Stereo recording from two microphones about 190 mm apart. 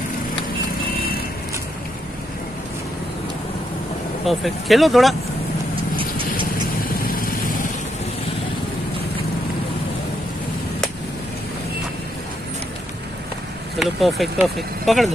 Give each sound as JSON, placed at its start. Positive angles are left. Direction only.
{"t": 4.3, "sound": "speech", "side_deg": 0}
{"t": 5.9, "sound": "vehicle", "side_deg": -25}
{"t": 6.9, "sound": "vehicle", "side_deg": 50}
{"t": 13.7, "sound": "speech", "side_deg": 0}